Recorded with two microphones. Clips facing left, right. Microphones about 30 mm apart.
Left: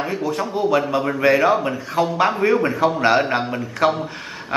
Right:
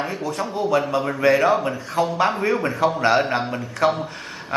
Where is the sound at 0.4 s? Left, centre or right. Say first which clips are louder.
Left 1 dB; centre.